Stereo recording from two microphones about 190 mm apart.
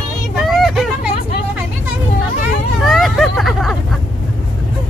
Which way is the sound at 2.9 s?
Centre (ahead or behind).